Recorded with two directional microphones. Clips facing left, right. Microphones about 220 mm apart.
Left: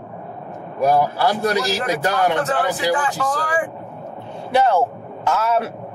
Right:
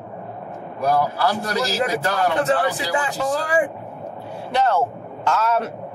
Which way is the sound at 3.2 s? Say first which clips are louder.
Right 2 dB; 25° right (ahead or behind).